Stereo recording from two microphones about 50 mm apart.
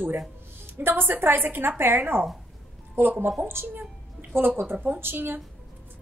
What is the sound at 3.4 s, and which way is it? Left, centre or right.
A woman's voice, right.